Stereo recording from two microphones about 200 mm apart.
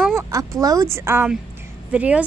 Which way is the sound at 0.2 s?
15° right (ahead or behind).